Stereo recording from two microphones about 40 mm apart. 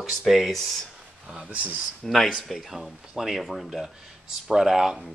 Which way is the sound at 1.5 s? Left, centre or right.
Right.